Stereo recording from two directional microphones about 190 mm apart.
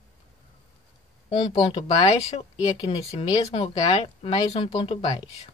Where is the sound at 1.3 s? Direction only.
25° left (ahead or behind).